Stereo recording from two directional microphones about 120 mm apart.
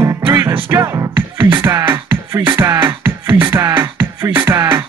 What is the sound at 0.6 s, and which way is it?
Music, 25° right (ahead or behind).